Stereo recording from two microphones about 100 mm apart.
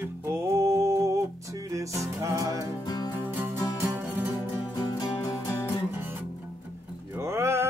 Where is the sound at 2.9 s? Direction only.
45° left (ahead or behind).